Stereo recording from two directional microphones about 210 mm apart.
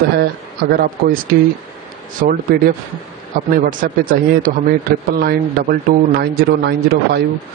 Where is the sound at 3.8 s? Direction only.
40° right (ahead or behind).